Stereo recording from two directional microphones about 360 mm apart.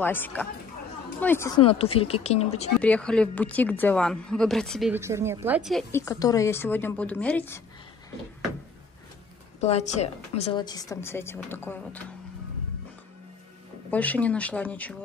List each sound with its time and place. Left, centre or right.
0.0 s a woman's voice: centre
2.8 s a woman's voice: centre
9.6 s a woman's voice: centre
13.8 s a woman's voice: centre